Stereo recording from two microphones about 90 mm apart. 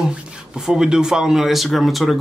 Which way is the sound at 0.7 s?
5° right (ahead or behind).